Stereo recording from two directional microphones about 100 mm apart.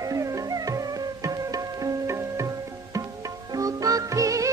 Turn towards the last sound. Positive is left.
turn(degrees=-35)  # may be behind; listen again after turning